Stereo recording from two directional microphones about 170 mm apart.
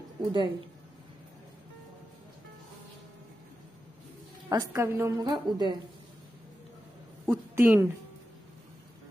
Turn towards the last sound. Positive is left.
turn(degrees=-10)  # may be behind; listen again after turning